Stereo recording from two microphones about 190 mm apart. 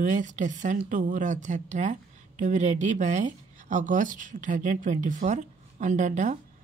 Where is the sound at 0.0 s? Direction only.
40° right (ahead or behind).